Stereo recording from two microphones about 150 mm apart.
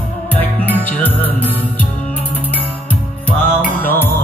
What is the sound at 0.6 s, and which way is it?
Music, 10° left (ahead or behind).